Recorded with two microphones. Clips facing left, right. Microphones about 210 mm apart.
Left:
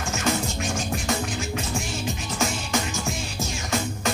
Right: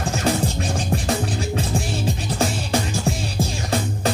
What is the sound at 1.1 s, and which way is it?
Music, 35° right (ahead or behind).